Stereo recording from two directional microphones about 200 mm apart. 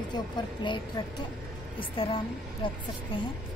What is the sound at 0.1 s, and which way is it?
A woman's voice, 20° left (ahead or behind).